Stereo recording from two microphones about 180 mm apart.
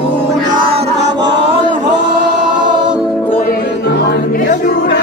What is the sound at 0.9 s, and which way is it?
A capella, 75° right (ahead or behind).